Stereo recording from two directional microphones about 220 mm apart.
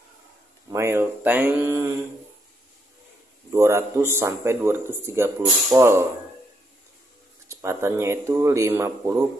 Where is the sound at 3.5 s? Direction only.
10° right (ahead or behind).